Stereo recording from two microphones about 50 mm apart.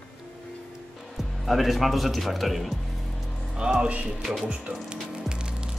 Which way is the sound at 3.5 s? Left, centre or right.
Centre.